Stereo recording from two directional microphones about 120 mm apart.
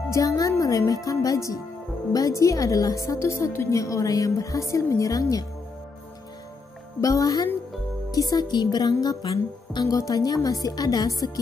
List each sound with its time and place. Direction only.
0.1 s a woman's voice: 25° left (ahead or behind)
7.0 s a woman's voice: 30° left (ahead or behind)